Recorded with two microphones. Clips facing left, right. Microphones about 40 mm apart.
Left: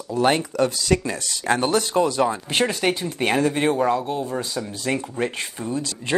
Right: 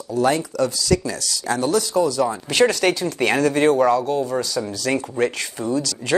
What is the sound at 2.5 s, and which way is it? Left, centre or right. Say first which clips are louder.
Speech: right 5 dB; left.